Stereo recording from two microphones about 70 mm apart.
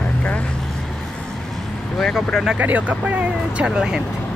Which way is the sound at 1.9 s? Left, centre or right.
Centre.